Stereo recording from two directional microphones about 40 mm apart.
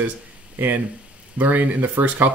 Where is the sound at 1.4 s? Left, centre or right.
Right.